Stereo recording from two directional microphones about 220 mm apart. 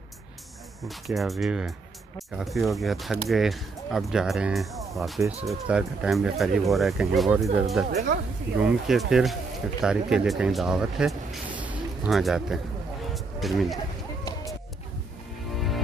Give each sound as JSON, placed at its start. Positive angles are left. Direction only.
{"t": 0.8, "sound": "speech", "side_deg": 0}
{"t": 7.9, "sound": "speech", "side_deg": -45}
{"t": 8.5, "sound": "speech", "side_deg": -5}
{"t": 13.1, "sound": "a sound", "side_deg": 0}